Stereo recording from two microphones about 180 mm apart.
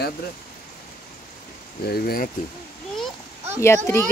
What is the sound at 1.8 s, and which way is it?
Speech, 55° left (ahead or behind).